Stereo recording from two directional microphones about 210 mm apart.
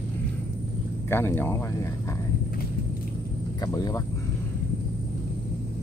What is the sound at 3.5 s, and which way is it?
Speech, 20° left (ahead or behind).